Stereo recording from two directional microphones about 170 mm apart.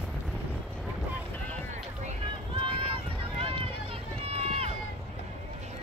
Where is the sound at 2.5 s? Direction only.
30° right (ahead or behind).